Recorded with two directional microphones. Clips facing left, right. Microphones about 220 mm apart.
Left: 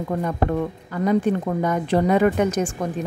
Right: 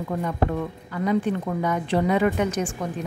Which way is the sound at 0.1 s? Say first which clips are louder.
Left 2 dB; 45° left (ahead or behind).